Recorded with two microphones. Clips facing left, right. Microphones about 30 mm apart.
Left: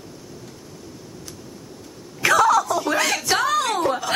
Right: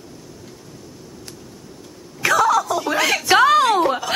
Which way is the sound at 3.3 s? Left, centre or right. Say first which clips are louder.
Right 9 dB; right.